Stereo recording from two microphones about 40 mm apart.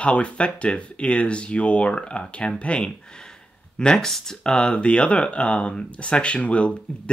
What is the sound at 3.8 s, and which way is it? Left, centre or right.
Speech, centre.